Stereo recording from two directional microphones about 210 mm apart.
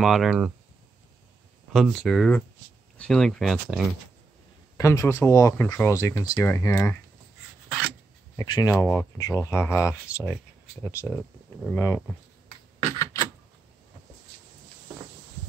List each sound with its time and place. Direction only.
0.0 s speech: centre (ahead or behind)
1.7 s speech: centre (ahead or behind)
4.7 s speech: 15° left (ahead or behind)
8.4 s speech: 15° left (ahead or behind)
12.9 s a sound: 15° left (ahead or behind)